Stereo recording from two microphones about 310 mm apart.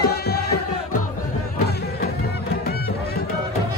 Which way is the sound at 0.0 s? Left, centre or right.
Left.